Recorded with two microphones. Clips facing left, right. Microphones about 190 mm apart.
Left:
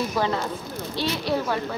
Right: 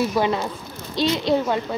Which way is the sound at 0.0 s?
15° right (ahead or behind).